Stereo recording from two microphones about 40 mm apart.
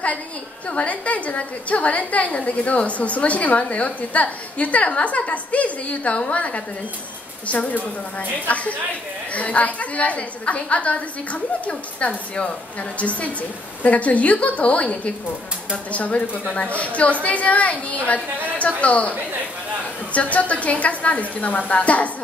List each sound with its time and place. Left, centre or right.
0.7 s a woman's voice: left